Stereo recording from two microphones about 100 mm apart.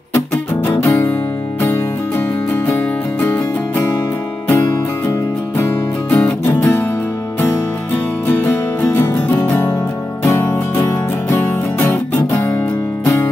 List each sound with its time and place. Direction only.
0.8 s music: 15° left (ahead or behind)
2.5 s music: 20° left (ahead or behind)
6.0 s music: 15° left (ahead or behind)
8.9 s music: 20° left (ahead or behind)
13.0 s music: 30° left (ahead or behind)